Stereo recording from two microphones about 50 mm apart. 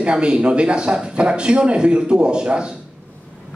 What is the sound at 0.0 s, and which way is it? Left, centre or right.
A man's voice, centre.